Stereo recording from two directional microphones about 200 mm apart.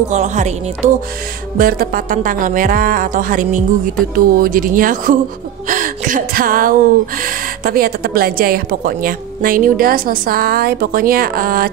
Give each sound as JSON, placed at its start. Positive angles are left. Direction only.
{"t": 0.1, "sound": "speech", "side_deg": -35}
{"t": 1.6, "sound": "a woman's voice", "side_deg": -45}